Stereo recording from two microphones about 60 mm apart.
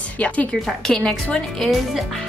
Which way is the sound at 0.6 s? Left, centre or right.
Centre.